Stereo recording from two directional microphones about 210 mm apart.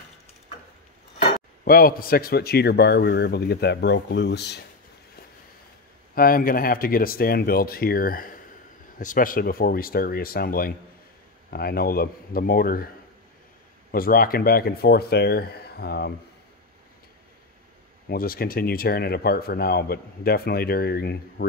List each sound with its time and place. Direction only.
1.6 s speech: 45° left (ahead or behind)
6.1 s speech: 45° left (ahead or behind)
13.9 s speech: 45° left (ahead or behind)
18.0 s speech: 45° left (ahead or behind)